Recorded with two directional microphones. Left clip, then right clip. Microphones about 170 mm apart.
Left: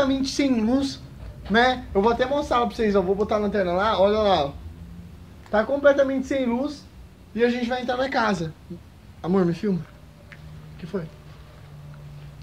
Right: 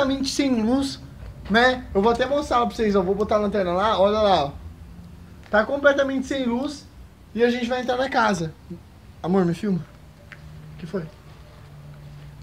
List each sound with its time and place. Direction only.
0.0 s speech: 55° right (ahead or behind)
3.6 s speech: 30° right (ahead or behind)
4.2 s speech: 55° right (ahead or behind)
5.5 s a woman's voice: 20° right (ahead or behind)
7.3 s a man's voice: 45° right (ahead or behind)
9.2 s speech: 25° right (ahead or behind)
9.5 s a man's voice: 50° right (ahead or behind)
10.8 s speech: 60° right (ahead or behind)